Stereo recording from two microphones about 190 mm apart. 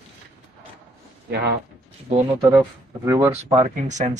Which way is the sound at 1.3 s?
60° right (ahead or behind).